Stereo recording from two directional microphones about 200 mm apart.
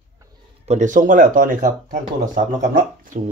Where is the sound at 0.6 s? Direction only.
40° right (ahead or behind).